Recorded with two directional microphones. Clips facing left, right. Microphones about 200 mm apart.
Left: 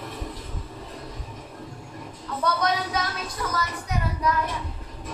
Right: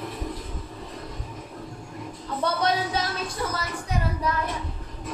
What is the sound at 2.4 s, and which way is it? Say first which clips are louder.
Speech: even; 30° right (ahead or behind).